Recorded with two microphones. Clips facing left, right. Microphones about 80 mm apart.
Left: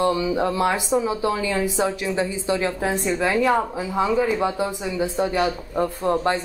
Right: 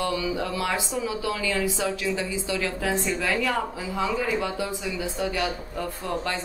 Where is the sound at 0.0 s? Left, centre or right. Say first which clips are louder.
Left 6 dB; left.